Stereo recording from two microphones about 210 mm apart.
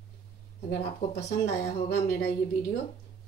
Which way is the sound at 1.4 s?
50° left (ahead or behind).